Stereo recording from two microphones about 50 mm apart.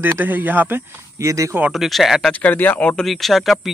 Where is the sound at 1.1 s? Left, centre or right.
Right.